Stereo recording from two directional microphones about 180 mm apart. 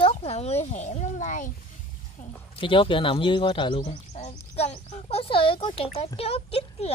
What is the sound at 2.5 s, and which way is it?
Speech, 30° left (ahead or behind).